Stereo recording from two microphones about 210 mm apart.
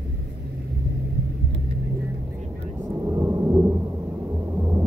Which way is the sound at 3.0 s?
15° right (ahead or behind).